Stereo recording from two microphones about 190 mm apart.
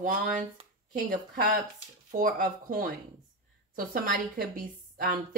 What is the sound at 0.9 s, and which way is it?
A woman's voice, 45° right (ahead or behind).